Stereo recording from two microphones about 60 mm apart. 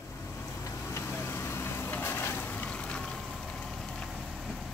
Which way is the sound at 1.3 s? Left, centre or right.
Left.